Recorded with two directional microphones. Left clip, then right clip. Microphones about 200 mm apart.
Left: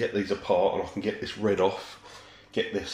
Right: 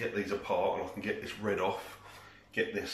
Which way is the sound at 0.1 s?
20° left (ahead or behind).